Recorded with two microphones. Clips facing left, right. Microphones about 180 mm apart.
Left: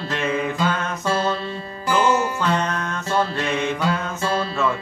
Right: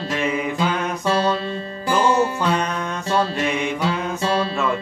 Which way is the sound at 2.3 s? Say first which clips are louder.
Right 1 dB; 15° right (ahead or behind).